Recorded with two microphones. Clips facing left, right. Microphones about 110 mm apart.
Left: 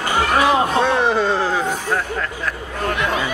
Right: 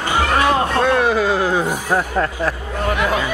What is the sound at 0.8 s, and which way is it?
Speech, centre (ahead or behind).